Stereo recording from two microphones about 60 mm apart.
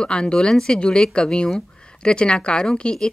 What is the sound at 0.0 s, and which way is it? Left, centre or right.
A woman's voice, centre.